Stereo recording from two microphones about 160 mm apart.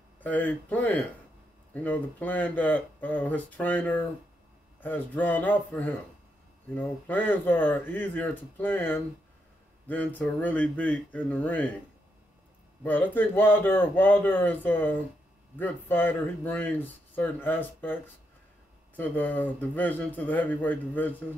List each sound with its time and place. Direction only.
0.2 s speech: 10° left (ahead or behind)
12.8 s speech: 10° left (ahead or behind)